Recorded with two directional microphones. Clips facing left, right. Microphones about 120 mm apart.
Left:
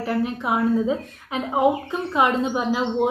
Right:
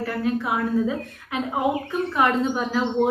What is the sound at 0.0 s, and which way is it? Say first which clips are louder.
A woman's voice: left 1 dB; 20° left (ahead or behind).